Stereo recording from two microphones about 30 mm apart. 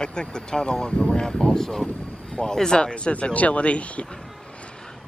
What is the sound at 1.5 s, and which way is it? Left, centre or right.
A woman's voice, centre.